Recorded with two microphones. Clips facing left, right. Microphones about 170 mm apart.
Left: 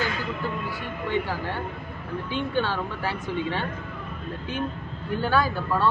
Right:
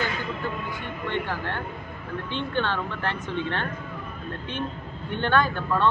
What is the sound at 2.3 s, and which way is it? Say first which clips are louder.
Speech: left 1 dB; 10° left (ahead or behind).